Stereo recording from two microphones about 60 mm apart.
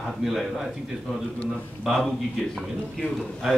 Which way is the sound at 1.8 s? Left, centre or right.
Centre.